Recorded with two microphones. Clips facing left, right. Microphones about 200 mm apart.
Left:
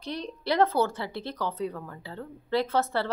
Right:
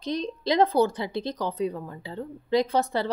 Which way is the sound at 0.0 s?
20° right (ahead or behind).